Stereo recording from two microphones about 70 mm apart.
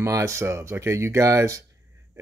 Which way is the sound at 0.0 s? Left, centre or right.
Right.